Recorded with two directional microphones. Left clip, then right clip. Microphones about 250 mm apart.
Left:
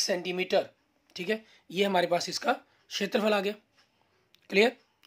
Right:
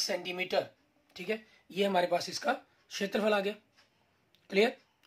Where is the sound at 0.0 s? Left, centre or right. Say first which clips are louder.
Left 4 dB; left.